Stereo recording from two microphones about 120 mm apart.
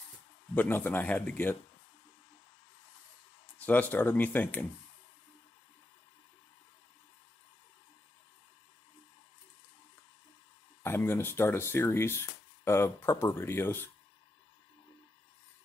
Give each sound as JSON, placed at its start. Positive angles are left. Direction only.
{"t": 0.6, "sound": "speech", "side_deg": 15}
{"t": 3.5, "sound": "speech", "side_deg": 15}
{"t": 10.8, "sound": "speech", "side_deg": 20}